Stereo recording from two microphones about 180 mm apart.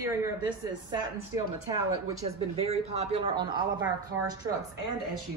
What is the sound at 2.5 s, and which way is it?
A man's voice, 35° right (ahead or behind).